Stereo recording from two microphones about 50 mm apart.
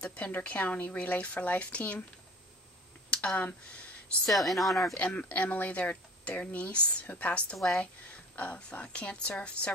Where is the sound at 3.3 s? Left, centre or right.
Left.